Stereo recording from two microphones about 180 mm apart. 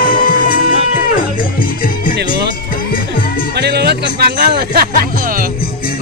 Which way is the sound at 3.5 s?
65° right (ahead or behind).